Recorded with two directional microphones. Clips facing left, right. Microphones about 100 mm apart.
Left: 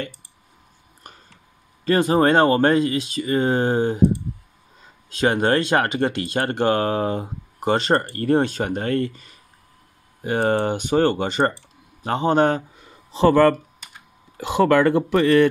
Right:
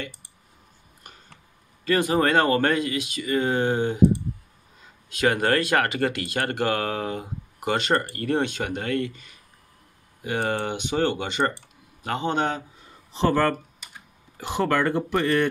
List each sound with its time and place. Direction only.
1.0 s a sound: 40° left (ahead or behind)
1.9 s speech: 35° left (ahead or behind)
5.1 s speech: 30° left (ahead or behind); by 12.6 s 45° left (ahead or behind)
14.3 s speech: 90° left